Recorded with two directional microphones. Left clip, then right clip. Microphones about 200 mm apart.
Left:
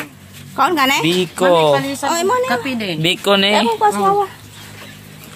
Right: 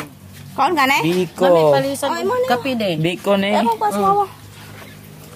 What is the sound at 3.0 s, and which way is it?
Speech, centre (ahead or behind).